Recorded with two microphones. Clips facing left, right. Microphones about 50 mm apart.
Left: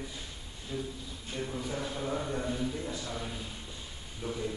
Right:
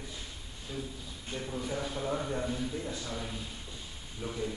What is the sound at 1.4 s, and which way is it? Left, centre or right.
A man's voice, centre.